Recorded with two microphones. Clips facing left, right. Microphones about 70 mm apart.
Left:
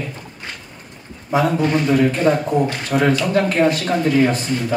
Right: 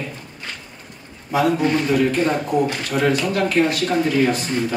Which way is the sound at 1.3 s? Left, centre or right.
Left.